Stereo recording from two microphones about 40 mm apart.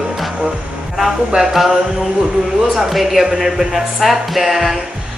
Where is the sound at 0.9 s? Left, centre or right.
Centre.